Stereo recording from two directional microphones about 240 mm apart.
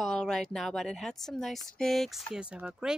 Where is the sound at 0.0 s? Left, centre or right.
Centre.